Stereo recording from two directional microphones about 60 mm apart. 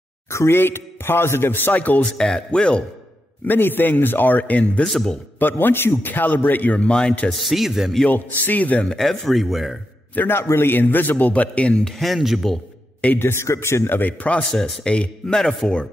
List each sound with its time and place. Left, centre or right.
0.3 s speech: left
2.1 s a man's voice: centre
3.4 s speech: left
4.8 s a man's voice: centre
5.4 s speech: left; by 7.2 s centre
7.2 s speech: centre
8.1 s a man's voice: left
8.8 s speech: centre
10.1 s speech: left
11.8 s speech: centre
13.2 s speech: left
14.5 s a man's voice: centre